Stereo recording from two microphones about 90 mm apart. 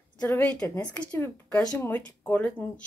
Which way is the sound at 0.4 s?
10° left (ahead or behind).